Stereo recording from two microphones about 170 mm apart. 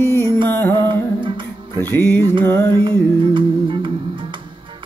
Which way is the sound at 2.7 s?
30° right (ahead or behind).